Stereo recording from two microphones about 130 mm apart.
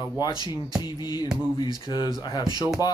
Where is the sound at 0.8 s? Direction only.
35° left (ahead or behind).